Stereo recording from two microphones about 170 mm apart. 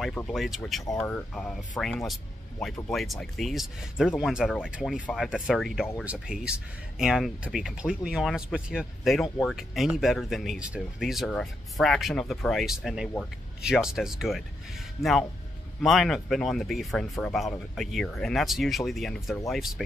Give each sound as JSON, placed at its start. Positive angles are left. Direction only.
{"t": 0.0, "sound": "speech", "side_deg": 10}
{"t": 0.3, "sound": "speech", "side_deg": 0}